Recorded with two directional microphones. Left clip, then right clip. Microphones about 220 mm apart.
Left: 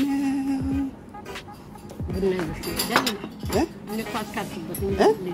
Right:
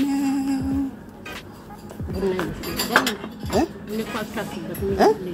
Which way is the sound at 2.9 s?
40° left (ahead or behind).